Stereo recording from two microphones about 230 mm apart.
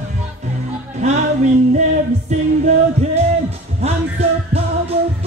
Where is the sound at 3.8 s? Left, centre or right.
Right.